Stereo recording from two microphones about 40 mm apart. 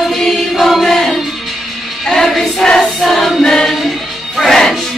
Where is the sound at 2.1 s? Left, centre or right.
Centre.